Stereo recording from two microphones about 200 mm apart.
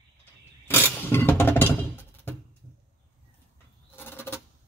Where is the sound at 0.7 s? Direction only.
10° left (ahead or behind).